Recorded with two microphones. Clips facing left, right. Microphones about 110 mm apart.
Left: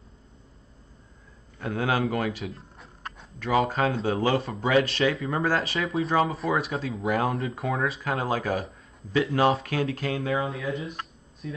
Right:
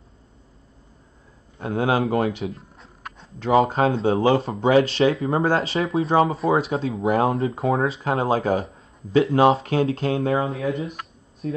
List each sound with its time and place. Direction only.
1.6 s speech: 25° right (ahead or behind)
2.5 s a sound: centre (ahead or behind)
3.3 s speech: 30° right (ahead or behind)